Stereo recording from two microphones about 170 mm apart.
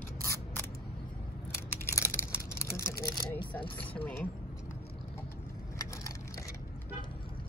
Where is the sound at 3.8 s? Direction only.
10° left (ahead or behind).